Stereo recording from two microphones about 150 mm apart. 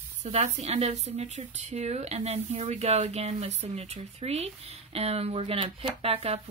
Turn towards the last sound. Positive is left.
turn(degrees=-40)  # may be behind; listen again after turning